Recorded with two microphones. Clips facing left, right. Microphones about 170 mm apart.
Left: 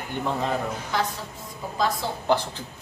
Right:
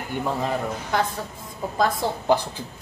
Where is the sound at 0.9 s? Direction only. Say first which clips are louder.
Right 3 dB; 50° right (ahead or behind).